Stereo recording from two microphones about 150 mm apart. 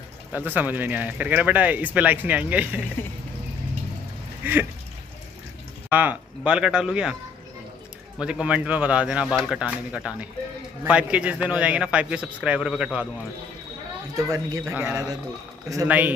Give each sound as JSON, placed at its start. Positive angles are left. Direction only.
{"t": 0.3, "sound": "speech", "side_deg": -10}
{"t": 4.4, "sound": "speech", "side_deg": -15}
{"t": 5.9, "sound": "speech", "side_deg": -10}
{"t": 8.2, "sound": "speech", "side_deg": -5}
{"t": 14.1, "sound": "speech", "side_deg": -20}
{"t": 14.7, "sound": "speech", "side_deg": -10}